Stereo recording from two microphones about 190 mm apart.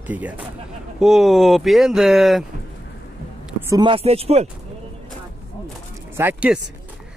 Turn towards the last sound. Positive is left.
turn(degrees=-10)  # may be behind; listen again after turning